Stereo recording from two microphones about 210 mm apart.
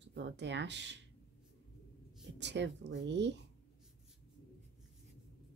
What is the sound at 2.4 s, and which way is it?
Speech, 55° right (ahead or behind).